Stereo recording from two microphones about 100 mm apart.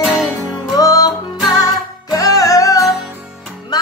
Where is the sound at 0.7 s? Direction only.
35° left (ahead or behind).